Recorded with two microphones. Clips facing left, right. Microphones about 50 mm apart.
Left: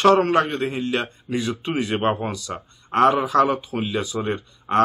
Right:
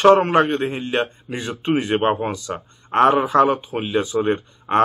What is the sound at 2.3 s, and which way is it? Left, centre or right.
Speech, right.